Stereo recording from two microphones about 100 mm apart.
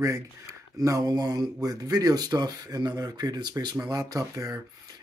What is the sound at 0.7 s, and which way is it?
Speech, 35° right (ahead or behind).